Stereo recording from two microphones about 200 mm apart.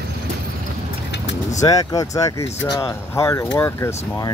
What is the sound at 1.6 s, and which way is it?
Speech, 20° left (ahead or behind).